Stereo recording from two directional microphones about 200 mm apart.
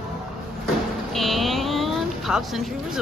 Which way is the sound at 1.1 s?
Centre (ahead or behind).